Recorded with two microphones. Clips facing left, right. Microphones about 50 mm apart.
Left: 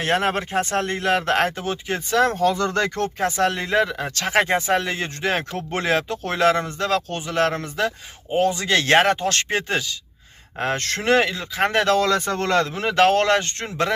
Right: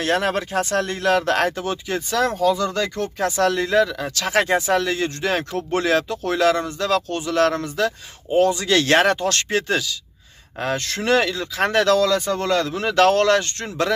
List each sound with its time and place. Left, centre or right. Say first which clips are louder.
0.0 s speech: even; left
2.4 s speech: even; left
3.2 s speech: right 3 dB; left
10.6 s speech: even; left
11.1 s speech: even; left
12.0 s speech: right 1 dB; left
12.7 s speech: right 3 dB; left